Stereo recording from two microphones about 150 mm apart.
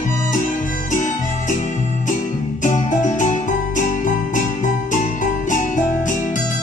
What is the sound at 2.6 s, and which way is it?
Music, 55° left (ahead or behind).